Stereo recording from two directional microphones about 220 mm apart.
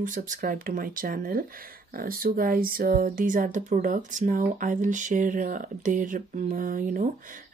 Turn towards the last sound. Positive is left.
turn(degrees=-40)  # may be behind; listen again after turning